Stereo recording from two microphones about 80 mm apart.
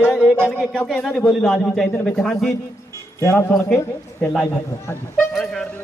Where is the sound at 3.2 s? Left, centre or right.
Left.